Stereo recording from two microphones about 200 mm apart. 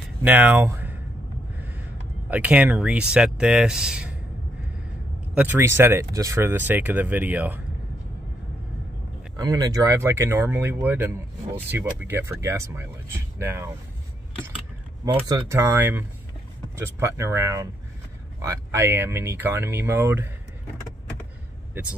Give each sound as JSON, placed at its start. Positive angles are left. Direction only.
{"t": 0.2, "sound": "speech", "side_deg": -10}
{"t": 5.4, "sound": "speech", "side_deg": -10}
{"t": 9.4, "sound": "speech", "side_deg": -20}
{"t": 15.1, "sound": "speech", "side_deg": -25}
{"t": 15.4, "sound": "speech", "side_deg": -15}